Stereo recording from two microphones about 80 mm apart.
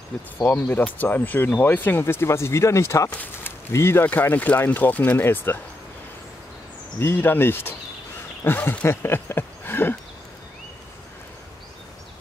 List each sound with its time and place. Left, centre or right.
0.5 s speech: left
3.1 s speech: left
3.7 s speech: left
4.0 s speech: left
7.0 s speech: left